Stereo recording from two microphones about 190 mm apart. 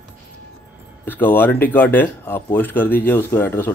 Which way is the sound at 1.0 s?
10° left (ahead or behind).